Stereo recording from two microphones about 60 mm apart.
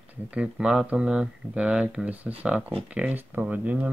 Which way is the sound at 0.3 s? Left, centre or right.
Centre.